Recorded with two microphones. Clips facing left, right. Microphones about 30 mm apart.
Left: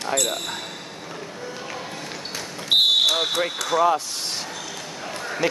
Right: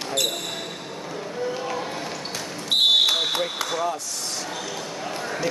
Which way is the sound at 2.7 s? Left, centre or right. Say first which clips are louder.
Left 2 dB; left.